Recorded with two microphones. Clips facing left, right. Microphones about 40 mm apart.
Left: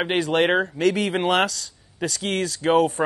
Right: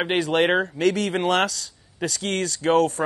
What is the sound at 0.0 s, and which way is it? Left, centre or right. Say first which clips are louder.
Speech: even; centre.